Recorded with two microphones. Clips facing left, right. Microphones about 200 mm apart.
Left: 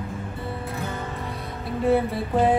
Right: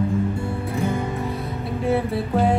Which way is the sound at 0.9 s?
10° right (ahead or behind).